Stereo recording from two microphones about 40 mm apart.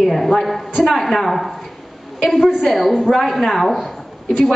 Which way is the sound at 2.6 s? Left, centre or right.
Centre.